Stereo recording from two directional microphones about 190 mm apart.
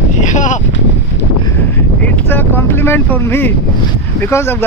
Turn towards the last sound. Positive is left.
turn(degrees=15)  # may be behind; listen again after turning